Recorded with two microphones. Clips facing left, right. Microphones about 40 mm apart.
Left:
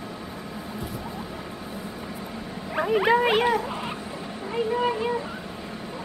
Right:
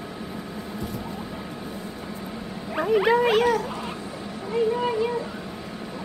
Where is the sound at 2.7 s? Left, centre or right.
Centre.